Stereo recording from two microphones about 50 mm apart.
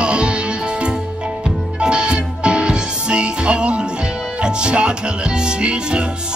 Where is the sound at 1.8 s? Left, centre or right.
Centre.